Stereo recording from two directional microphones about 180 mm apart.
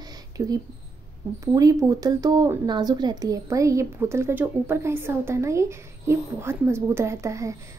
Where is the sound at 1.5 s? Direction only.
20° right (ahead or behind).